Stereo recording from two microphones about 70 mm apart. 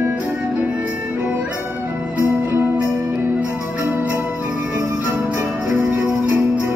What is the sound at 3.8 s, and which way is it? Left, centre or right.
Music, right.